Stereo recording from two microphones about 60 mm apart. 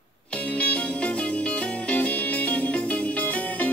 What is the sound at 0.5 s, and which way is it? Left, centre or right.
Music, left.